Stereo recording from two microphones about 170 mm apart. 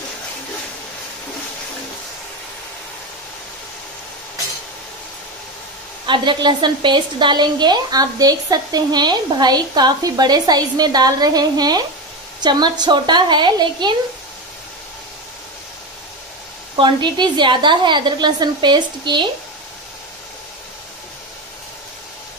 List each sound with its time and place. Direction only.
6.0 s a woman's voice: 30° right (ahead or behind)
16.7 s a woman's voice: 25° right (ahead or behind)